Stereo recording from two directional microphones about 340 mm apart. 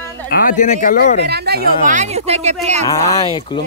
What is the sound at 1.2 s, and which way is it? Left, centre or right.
Speech, right.